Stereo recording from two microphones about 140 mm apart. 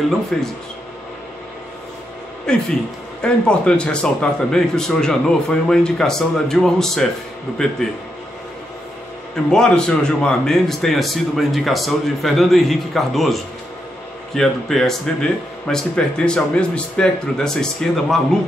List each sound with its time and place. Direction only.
0.3 s a man's voice: 5° left (ahead or behind)
2.5 s a man's voice: 5° left (ahead or behind)
9.3 s a man's voice: 5° left (ahead or behind)